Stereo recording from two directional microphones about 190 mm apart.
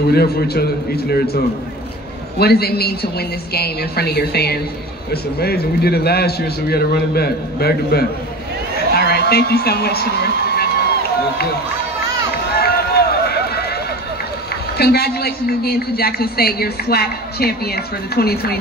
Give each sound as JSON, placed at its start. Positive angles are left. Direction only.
{"t": 0.1, "sound": "a woman's voice", "side_deg": 55}
{"t": 2.3, "sound": "a woman's voice", "side_deg": 55}
{"t": 8.9, "sound": "a sound", "side_deg": 55}
{"t": 12.4, "sound": "run", "side_deg": 55}
{"t": 14.8, "sound": "a woman's voice", "side_deg": 55}